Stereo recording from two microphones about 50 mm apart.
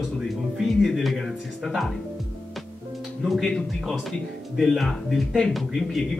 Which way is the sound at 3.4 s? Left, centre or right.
Centre.